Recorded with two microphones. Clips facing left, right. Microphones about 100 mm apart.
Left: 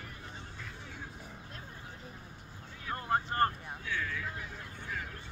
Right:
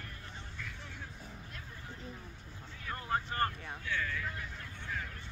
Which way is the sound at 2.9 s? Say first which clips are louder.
Left 3 dB; 35° left (ahead or behind).